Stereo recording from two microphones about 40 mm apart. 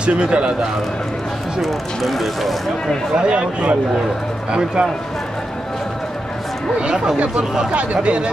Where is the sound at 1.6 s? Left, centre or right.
Centre.